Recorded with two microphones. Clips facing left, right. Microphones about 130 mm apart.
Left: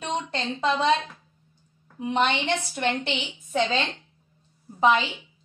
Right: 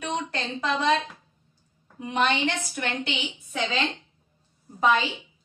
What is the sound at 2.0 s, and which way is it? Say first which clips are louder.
A woman's voice: left 1 dB; 25° left (ahead or behind).